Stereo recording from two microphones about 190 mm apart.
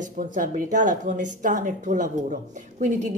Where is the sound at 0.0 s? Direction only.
45° right (ahead or behind).